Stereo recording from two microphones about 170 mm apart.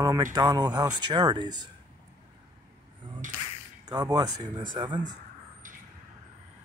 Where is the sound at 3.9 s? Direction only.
25° right (ahead or behind).